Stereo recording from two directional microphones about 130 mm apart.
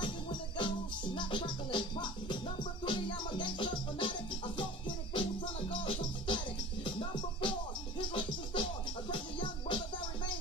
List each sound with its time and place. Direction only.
0.0 s music: 40° left (ahead or behind)